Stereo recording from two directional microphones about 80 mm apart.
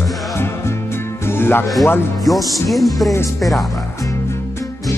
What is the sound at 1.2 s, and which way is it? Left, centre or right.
Music, left.